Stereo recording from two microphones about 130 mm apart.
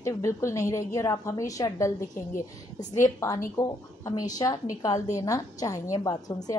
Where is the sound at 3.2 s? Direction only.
20° left (ahead or behind).